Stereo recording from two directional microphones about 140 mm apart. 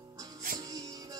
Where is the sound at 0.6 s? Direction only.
25° right (ahead or behind).